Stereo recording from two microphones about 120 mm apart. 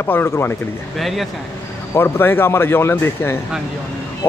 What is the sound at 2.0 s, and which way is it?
Speech, 20° left (ahead or behind).